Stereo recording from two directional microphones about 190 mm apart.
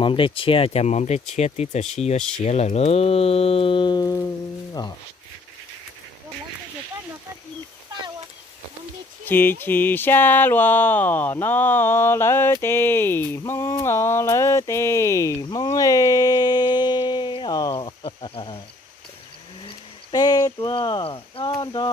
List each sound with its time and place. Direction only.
0.0 s speech: 25° left (ahead or behind)
9.2 s speech: 10° left (ahead or behind); by 18.6 s 25° left (ahead or behind)
20.1 s speech: 20° left (ahead or behind)